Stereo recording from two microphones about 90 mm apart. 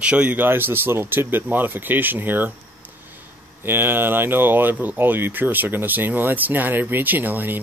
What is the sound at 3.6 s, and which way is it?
Speech, 25° right (ahead or behind).